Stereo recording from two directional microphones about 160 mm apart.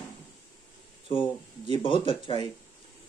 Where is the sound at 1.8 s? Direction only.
30° left (ahead or behind).